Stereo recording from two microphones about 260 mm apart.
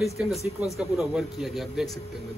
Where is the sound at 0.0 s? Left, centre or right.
Centre.